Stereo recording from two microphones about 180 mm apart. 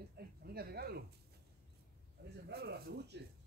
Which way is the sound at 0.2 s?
60° right (ahead or behind).